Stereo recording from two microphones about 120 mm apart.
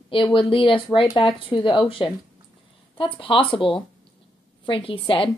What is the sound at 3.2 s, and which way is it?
Speech, 45° left (ahead or behind).